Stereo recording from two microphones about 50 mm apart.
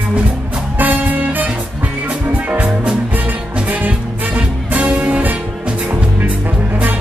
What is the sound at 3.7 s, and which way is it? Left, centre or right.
Music, right.